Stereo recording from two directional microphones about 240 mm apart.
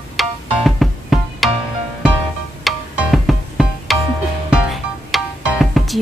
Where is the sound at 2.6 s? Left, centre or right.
Centre.